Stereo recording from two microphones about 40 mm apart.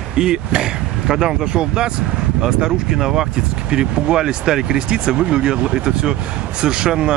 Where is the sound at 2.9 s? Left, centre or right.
Centre.